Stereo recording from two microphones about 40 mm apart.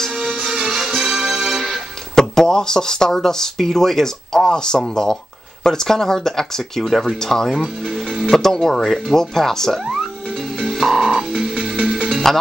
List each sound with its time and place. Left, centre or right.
0.2 s music: centre
2.1 s speech: centre
8.3 s speech: centre
10.7 s music: centre
11.0 s frog: centre